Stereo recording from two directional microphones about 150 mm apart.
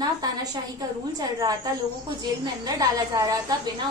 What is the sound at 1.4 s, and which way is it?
A woman's voice, 25° right (ahead or behind).